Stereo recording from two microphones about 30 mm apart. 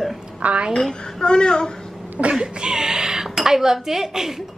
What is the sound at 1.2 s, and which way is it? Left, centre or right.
Speech, left.